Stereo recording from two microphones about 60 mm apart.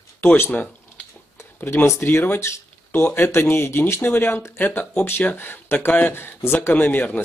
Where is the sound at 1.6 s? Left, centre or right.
Left.